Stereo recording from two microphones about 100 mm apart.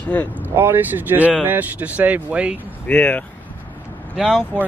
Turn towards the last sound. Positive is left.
turn(degrees=-5)  # may be behind; listen again after turning